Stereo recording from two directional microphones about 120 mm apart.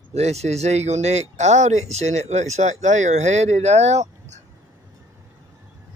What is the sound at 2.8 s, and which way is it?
Speech, 85° right.